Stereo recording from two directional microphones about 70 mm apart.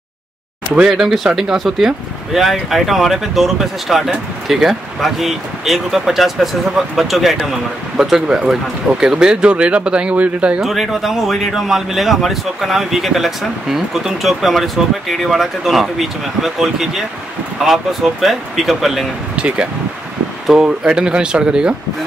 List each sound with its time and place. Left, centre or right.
0.8 s speech: centre
10.6 s speech: centre
19.3 s speech: centre